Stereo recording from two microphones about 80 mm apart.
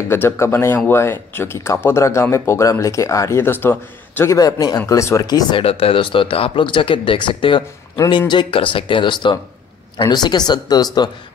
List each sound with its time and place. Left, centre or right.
0.1 s speech: left
4.3 s speech: left
5.2 s speech: left
9.9 s speech: left